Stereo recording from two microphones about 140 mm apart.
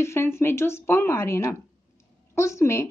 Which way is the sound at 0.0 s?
20° left (ahead or behind).